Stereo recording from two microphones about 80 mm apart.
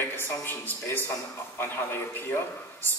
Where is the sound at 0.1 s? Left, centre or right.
Left.